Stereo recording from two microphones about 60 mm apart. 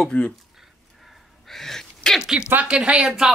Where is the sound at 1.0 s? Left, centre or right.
Centre.